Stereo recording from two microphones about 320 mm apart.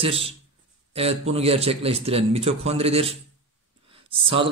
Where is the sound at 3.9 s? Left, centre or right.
Centre.